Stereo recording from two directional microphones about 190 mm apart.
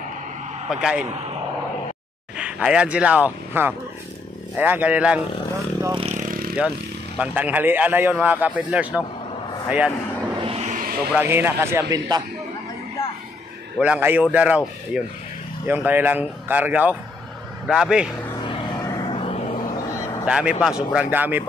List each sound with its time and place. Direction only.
0.7 s a man's voice: 5° right (ahead or behind)
2.3 s a man's voice: 5° right (ahead or behind)
5.8 s vehicle: 20° right (ahead or behind)
6.0 s vehicle: 40° right (ahead or behind)
7.2 s a man's voice: 10° right (ahead or behind)
10.4 s a sound: 35° right (ahead or behind)
11.1 s a man's voice: 10° right (ahead or behind)
13.7 s a man's voice: 5° right (ahead or behind)
18.4 s vehicle: 25° left (ahead or behind)
20.2 s a man's voice: 5° right (ahead or behind)